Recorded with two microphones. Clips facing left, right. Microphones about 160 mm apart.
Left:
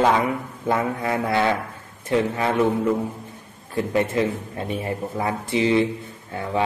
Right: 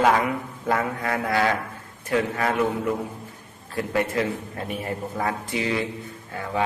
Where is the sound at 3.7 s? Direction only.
25° left (ahead or behind).